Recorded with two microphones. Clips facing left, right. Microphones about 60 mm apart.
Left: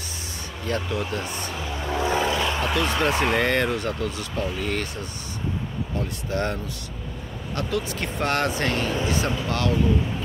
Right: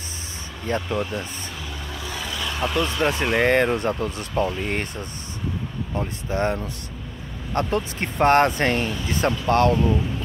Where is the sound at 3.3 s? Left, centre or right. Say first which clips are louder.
Right 3 dB; right.